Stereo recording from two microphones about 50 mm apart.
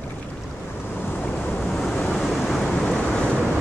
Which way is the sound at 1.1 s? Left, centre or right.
Left.